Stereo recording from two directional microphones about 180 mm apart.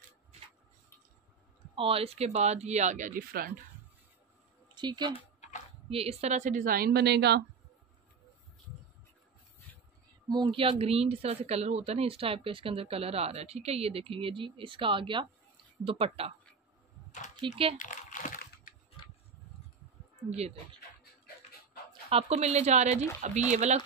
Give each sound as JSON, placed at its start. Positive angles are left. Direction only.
{"t": 1.8, "sound": "speech", "side_deg": -30}
{"t": 4.7, "sound": "a woman's voice", "side_deg": -25}
{"t": 10.2, "sound": "speech", "side_deg": -25}
{"t": 17.7, "sound": "crumpling", "side_deg": 45}
{"t": 20.2, "sound": "speech", "side_deg": -35}
{"t": 22.1, "sound": "speech", "side_deg": -35}